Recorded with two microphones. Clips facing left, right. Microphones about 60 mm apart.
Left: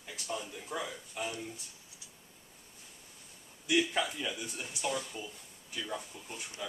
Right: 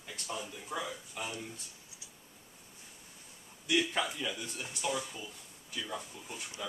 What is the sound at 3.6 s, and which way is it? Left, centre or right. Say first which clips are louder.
Speech: left 1 dB; centre.